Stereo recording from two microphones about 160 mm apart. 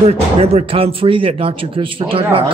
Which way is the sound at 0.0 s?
40° right (ahead or behind).